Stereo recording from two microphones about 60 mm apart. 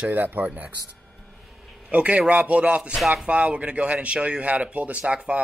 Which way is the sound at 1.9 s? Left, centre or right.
Right.